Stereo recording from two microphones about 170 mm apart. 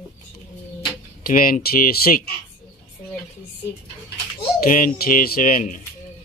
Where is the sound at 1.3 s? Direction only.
55° left (ahead or behind).